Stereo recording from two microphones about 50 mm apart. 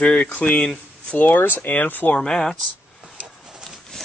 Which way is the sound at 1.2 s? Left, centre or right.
Left.